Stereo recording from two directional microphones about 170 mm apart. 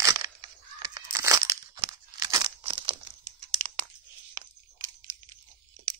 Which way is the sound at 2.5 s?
30° right (ahead or behind).